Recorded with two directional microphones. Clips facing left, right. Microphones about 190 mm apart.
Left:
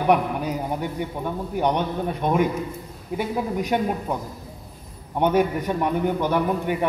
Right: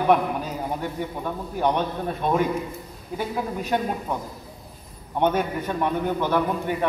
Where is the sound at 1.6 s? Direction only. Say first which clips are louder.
Left 1 dB; 15° left (ahead or behind).